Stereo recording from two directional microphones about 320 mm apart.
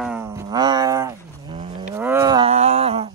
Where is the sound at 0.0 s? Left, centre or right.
Centre.